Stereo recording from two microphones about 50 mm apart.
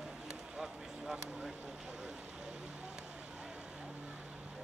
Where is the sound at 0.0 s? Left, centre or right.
Centre.